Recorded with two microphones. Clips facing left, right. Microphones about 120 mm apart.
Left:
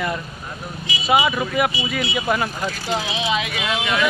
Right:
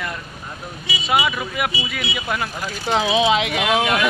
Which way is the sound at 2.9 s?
85° right.